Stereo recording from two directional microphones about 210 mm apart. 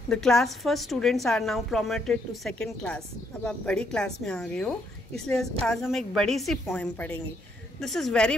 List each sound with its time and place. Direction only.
0.1 s a woman's voice: centre (ahead or behind)